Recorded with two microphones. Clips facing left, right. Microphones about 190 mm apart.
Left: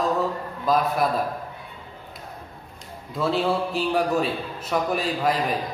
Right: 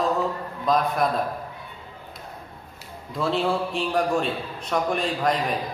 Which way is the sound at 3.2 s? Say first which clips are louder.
Left 1 dB; centre (ahead or behind).